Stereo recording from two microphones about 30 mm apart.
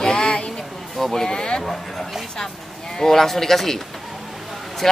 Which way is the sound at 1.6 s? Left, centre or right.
Centre.